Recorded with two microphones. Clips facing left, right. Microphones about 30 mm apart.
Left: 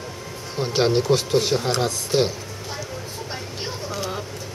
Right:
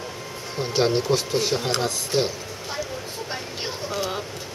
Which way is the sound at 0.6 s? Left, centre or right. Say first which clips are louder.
Left 2 dB; centre.